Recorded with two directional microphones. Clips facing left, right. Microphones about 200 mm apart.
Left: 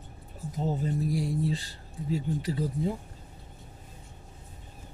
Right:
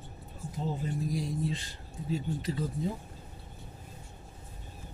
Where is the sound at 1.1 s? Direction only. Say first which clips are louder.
Left 4 dB; 30° left (ahead or behind).